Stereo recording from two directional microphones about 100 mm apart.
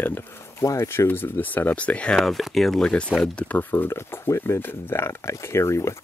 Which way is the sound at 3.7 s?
25° left (ahead or behind).